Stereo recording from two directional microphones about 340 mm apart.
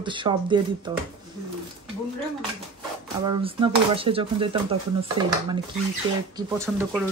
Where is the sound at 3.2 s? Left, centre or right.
Centre.